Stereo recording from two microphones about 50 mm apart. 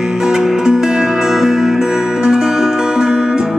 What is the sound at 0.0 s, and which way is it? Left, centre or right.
Music, centre.